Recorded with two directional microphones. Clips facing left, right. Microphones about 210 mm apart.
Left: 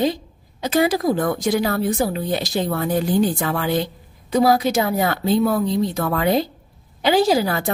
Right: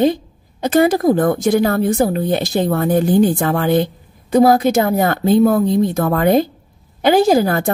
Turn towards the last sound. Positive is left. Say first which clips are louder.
# right 5 dB
turn(degrees=-50)  # may be behind; listen again after turning